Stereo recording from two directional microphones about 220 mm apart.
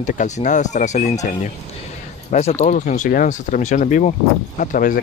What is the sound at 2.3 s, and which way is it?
Speech, 30° left (ahead or behind).